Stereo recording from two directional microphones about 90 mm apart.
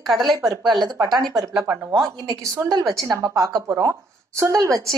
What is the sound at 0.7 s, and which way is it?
Speech, 40° right (ahead or behind).